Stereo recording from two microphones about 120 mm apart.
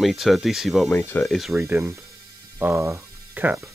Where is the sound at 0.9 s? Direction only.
15° left (ahead or behind).